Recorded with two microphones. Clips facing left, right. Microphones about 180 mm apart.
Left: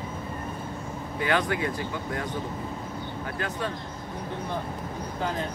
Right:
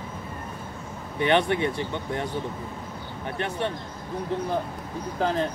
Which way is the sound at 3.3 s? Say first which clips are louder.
Right 4 dB; 25° right (ahead or behind).